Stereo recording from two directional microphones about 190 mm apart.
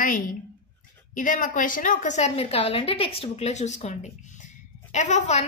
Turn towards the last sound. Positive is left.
turn(degrees=40)  # may be behind; listen again after turning